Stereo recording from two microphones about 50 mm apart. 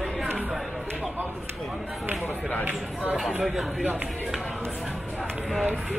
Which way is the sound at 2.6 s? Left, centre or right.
Right.